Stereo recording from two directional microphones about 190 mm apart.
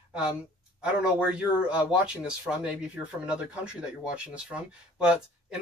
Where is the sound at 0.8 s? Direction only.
5° right (ahead or behind).